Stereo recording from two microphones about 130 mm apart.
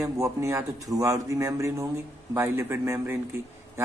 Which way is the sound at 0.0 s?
25° right (ahead or behind).